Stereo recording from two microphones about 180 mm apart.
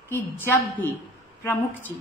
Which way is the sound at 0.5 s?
10° left (ahead or behind).